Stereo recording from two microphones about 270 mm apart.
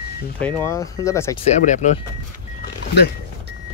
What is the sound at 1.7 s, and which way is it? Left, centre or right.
Speech, left.